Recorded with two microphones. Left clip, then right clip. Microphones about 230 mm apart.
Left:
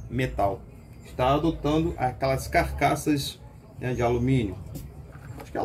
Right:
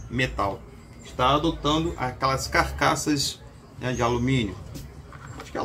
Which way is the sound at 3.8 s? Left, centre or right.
Centre.